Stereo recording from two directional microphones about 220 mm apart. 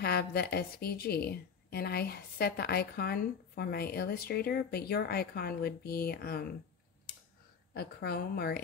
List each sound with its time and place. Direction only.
0.0 s speech: 45° left (ahead or behind)
7.7 s speech: 45° left (ahead or behind)